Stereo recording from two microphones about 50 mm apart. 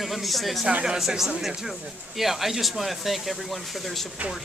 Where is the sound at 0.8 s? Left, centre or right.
Centre.